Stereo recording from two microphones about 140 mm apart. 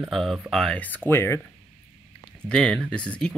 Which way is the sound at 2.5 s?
5° left (ahead or behind).